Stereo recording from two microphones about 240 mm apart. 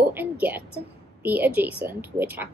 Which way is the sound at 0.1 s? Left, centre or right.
Centre.